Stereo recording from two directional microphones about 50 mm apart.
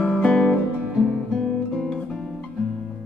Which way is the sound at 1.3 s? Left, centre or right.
Centre.